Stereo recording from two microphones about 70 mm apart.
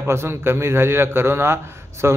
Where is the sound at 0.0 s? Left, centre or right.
Right.